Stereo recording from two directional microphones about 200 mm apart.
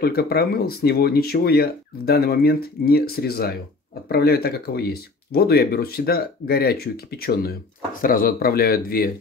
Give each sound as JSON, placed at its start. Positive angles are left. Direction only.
{"t": 0.0, "sound": "speech", "side_deg": 50}